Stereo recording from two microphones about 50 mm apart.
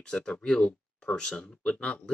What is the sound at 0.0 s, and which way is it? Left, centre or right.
Speech, centre.